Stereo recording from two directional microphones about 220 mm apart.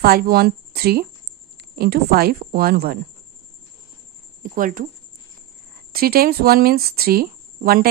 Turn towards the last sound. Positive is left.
turn(degrees=-40)  # may be behind; listen again after turning